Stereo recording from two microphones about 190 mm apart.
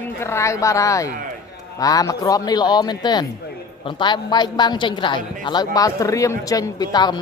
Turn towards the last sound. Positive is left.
turn(degrees=20)  # may be behind; listen again after turning